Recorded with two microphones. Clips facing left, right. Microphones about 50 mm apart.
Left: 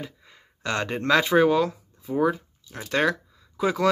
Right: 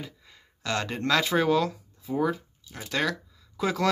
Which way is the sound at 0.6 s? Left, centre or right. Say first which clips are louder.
Left 3 dB; left.